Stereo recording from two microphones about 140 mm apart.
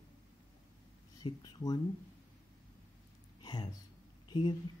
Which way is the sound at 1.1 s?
25° left (ahead or behind).